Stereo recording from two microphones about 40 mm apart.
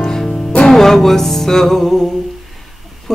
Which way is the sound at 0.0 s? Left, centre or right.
Centre.